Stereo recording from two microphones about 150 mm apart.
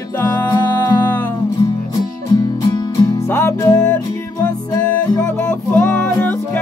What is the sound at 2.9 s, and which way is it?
Music, 20° left (ahead or behind).